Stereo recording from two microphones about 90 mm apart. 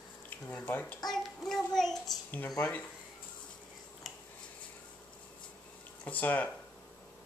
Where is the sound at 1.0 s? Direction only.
5° left (ahead or behind).